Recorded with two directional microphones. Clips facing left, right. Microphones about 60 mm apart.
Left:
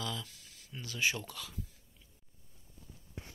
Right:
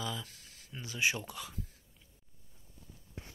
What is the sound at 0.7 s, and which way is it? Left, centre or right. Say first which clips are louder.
Speech: right 1 dB; centre.